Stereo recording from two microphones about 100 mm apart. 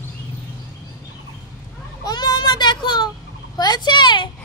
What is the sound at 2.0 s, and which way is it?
Children playing, 45° left (ahead or behind).